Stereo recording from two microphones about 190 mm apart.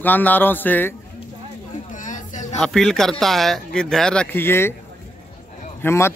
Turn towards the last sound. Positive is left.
turn(degrees=15)  # may be behind; listen again after turning